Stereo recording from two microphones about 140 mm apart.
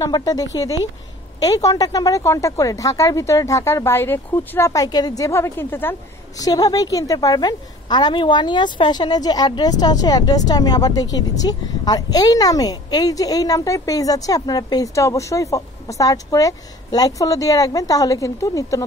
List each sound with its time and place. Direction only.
0.0 s a woman's voice: 25° left (ahead or behind)
6.4 s a woman's voice: 25° left (ahead or behind)